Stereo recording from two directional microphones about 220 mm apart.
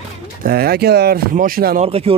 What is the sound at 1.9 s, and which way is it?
Speech, 25° right (ahead or behind).